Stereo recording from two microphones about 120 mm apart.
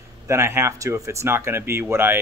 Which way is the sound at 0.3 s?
20° right (ahead or behind).